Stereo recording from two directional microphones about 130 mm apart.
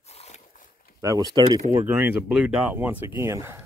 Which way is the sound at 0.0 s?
55° left (ahead or behind).